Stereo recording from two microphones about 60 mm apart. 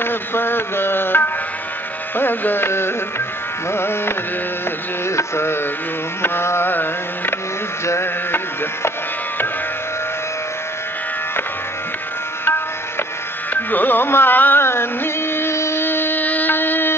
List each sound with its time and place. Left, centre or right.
0.0 s music: left
2.1 s speech: left
5.0 s a sound: left
7.8 s music: left
13.5 s carnatic music: left